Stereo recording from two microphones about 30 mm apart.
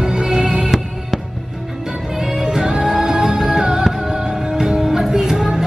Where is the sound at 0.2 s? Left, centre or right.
Right.